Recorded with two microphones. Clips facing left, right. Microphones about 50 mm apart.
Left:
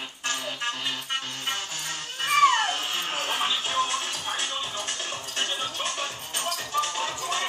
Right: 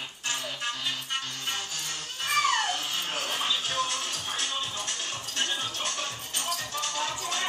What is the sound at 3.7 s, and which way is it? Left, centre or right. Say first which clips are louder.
Music: left 3 dB; left.